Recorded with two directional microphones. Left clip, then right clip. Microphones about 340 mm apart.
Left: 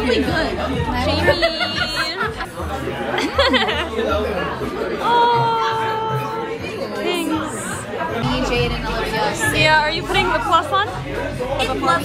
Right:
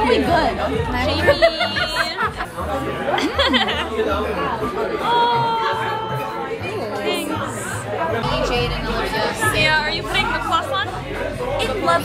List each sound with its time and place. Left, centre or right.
0.0 s chatter: right
1.0 s a woman's voice: centre
3.2 s a woman's voice: centre
5.0 s a sound: centre
9.6 s a woman's voice: centre
11.6 s speech: right